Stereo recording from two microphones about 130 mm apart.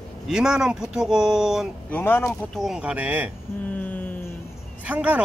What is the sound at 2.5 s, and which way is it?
Speech, 5° right (ahead or behind).